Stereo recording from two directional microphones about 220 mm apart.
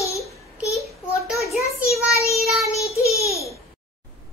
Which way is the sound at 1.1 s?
15° left (ahead or behind).